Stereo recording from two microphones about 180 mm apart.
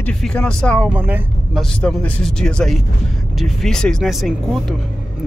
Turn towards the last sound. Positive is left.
turn(degrees=0)  # may be behind; listen again after turning